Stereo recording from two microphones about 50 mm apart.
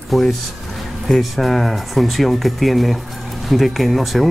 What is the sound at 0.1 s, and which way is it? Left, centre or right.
Speech, centre.